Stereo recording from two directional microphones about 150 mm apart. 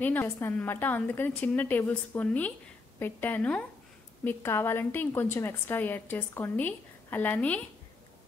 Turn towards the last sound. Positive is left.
turn(degrees=10)  # may be behind; listen again after turning